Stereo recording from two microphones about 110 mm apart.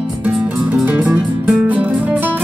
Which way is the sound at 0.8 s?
15° right (ahead or behind).